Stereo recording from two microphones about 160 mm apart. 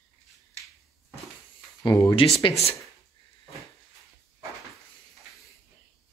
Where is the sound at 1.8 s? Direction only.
20° left (ahead or behind).